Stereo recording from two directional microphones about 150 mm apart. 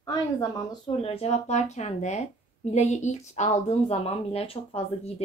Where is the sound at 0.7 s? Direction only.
35° left (ahead or behind).